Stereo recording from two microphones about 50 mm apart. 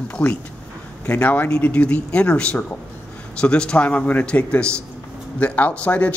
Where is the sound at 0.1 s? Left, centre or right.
Left.